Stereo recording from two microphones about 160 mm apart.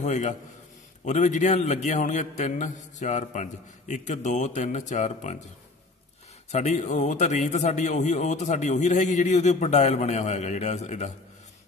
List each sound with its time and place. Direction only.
0.0 s a man's voice: 50° left (ahead or behind)
6.5 s a man's voice: 45° left (ahead or behind)